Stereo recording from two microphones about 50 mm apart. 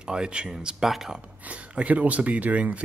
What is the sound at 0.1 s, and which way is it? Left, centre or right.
Speech, centre.